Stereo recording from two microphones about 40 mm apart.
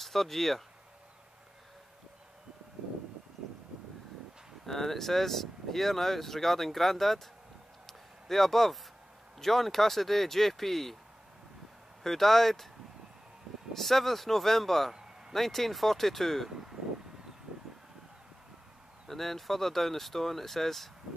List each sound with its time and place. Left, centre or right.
0.0 s speech: centre
4.6 s speech: centre
7.8 s a sound: centre
9.4 s speech: centre
12.0 s speech: centre
13.7 s speech: centre
14.9 s a sound: centre
15.3 s speech: centre
16.4 s speech: centre
19.0 s speech: centre